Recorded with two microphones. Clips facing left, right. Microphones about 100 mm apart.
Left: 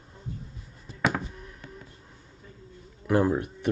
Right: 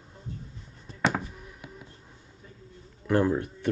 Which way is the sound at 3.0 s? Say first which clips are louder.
Left 1 dB; 10° left (ahead or behind).